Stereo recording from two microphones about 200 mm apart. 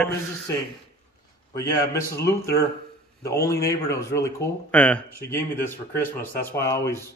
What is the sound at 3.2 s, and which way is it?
Speech, 15° left (ahead or behind).